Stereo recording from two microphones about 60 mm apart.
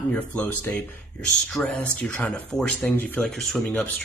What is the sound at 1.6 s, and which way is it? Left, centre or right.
Speech, left.